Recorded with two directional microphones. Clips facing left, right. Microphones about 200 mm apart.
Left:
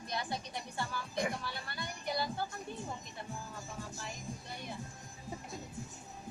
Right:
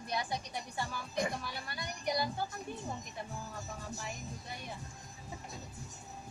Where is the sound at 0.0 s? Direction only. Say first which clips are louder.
Right 2 dB; 10° right (ahead or behind).